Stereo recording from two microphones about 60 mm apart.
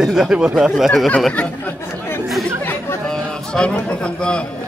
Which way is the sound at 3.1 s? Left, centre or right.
Centre.